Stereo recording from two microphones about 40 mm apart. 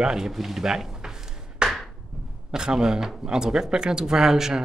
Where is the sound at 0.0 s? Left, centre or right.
Centre.